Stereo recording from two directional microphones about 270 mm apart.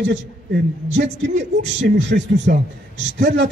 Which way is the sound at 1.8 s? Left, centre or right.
Right.